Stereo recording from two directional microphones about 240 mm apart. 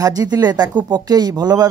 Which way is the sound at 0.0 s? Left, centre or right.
Centre.